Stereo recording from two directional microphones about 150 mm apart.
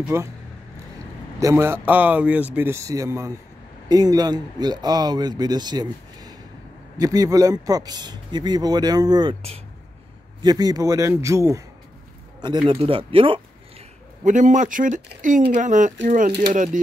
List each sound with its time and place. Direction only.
0.1 s speech: 20° right (ahead or behind)
1.4 s speech: 15° right (ahead or behind); by 9.6 s 40° right (ahead or behind)
10.4 s speech: 25° right (ahead or behind)
12.6 s speech: 35° right (ahead or behind)
14.2 s speech: 55° right (ahead or behind)